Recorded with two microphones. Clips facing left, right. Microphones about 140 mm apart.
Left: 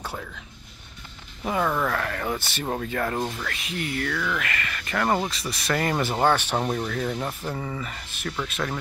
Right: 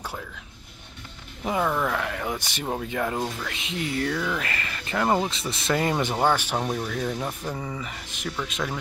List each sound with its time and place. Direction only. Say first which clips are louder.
1.4 s speech: even; 10° right (ahead or behind)
3.5 s speech: right 1 dB; 25° right (ahead or behind)
5.0 s speech: right 1 dB; 15° right (ahead or behind)
5.3 s speech: right 1 dB; 25° right (ahead or behind); by 7.3 s centre (ahead or behind)
7.4 s speech: left 1 dB; 10° right (ahead or behind)